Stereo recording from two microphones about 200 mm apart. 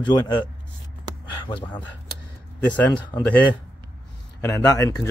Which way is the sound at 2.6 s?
10° left (ahead or behind).